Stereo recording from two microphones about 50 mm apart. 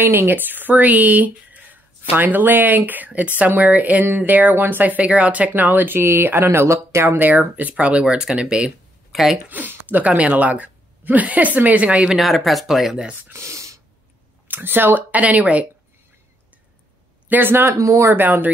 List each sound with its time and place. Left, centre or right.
0.0 s speech: right
5.5 s speech: right
5.9 s speech: right
7.2 s speech: right
7.7 s speech: right
9.1 s speech: centre
9.5 s speech: right
12.2 s speech: centre
13.3 s a sound: right
14.5 s speech: right
17.3 s speech: right
17.7 s speech: right
18.1 s speech: right